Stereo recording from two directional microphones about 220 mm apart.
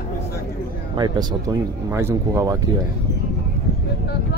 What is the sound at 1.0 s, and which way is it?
Speech, 20° right (ahead or behind).